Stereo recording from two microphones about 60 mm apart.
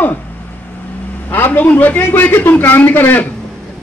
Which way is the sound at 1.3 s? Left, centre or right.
Left.